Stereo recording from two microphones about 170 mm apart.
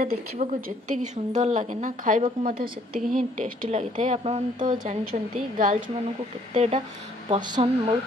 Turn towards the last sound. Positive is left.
turn(degrees=-25)  # may be behind; listen again after turning